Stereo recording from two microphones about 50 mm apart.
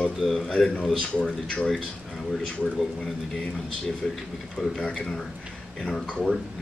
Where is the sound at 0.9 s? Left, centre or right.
Centre.